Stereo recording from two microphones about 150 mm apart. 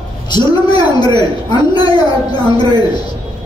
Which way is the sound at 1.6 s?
30° left (ahead or behind).